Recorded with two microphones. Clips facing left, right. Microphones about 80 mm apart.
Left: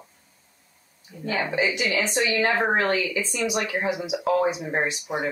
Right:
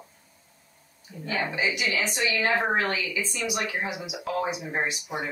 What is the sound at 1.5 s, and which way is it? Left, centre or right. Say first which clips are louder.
Speech: left 4 dB; left.